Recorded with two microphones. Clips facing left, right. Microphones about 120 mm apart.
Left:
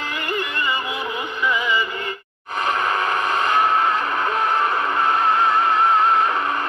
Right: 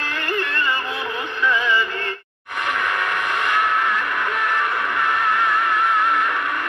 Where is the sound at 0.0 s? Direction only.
15° left (ahead or behind).